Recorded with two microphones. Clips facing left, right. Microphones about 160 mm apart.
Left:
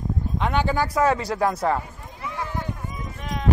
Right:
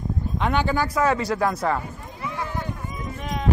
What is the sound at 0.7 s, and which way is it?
Speech, 30° left (ahead or behind).